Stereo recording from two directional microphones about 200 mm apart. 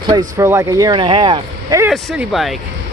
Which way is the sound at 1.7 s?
5° right (ahead or behind).